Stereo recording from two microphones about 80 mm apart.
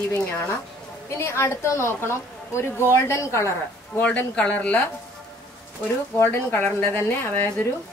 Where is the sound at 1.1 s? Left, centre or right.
Left.